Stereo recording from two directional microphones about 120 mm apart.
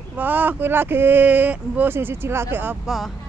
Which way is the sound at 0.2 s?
15° right (ahead or behind).